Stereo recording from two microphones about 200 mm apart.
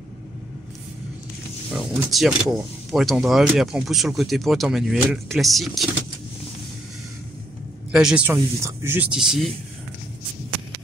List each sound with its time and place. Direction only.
1.7 s speech: centre (ahead or behind)
7.9 s speech: 5° right (ahead or behind)